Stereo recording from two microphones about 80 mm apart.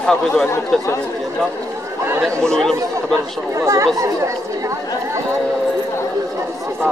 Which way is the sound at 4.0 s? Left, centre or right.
Right.